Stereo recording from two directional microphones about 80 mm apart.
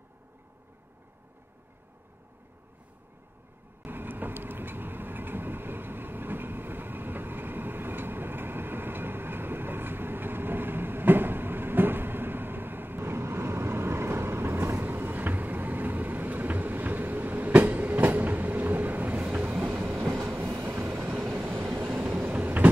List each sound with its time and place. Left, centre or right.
3.8 s vehicle: right
20.2 s train: right
22.0 s vehicle: centre